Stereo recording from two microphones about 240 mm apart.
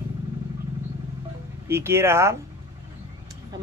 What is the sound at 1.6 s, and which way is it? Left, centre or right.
Speech, centre.